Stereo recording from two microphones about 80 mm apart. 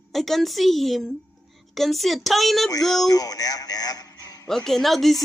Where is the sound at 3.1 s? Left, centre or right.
Left.